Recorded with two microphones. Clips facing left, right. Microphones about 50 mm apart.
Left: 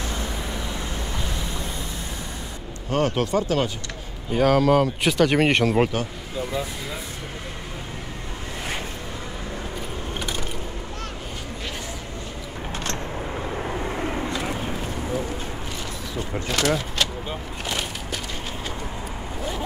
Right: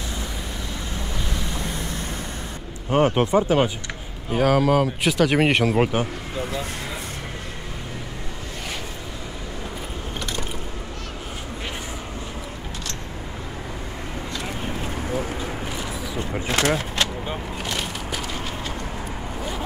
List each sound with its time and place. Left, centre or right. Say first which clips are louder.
2.9 s speech: right 4 dB; right
4.3 s speech: left 1 dB; centre
14.3 s vehicle: left 3 dB; centre
16.4 s vehicle: right 1 dB; right
17.6 s a sound: left 1 dB; centre